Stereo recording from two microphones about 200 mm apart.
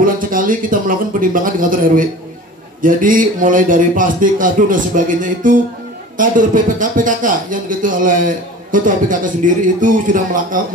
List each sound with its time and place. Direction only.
0.0 s a man's voice: 45° right (ahead or behind)